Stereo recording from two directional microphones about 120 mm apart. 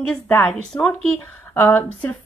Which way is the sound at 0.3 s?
15° left (ahead or behind).